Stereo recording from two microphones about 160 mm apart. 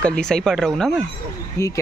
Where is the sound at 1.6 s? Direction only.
15° left (ahead or behind).